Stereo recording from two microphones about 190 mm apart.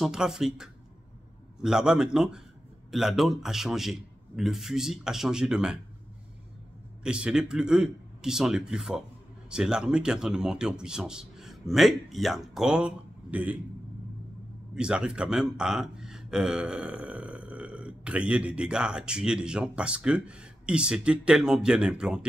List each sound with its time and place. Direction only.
0.0 s speech: centre (ahead or behind)
7.0 s speech: 5° right (ahead or behind)
14.8 s speech: 5° right (ahead or behind)